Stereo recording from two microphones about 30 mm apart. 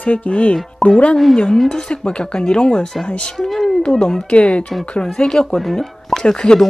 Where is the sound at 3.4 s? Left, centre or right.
Centre.